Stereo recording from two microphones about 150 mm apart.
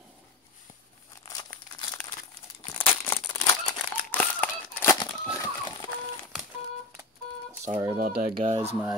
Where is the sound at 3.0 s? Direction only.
15° left (ahead or behind).